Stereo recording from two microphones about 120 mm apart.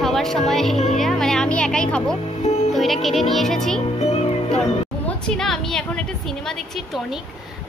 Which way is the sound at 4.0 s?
60° left (ahead or behind).